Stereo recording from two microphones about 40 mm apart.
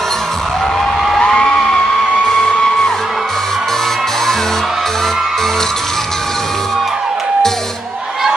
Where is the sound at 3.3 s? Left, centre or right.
Centre.